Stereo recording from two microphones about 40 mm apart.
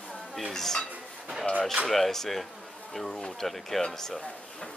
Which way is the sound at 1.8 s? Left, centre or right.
Centre.